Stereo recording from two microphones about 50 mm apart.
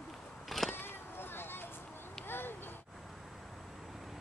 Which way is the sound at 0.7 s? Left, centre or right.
Left.